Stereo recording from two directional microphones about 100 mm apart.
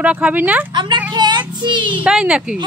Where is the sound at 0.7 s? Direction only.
50° right (ahead or behind).